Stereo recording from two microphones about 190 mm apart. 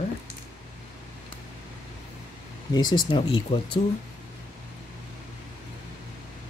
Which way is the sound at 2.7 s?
25° left (ahead or behind).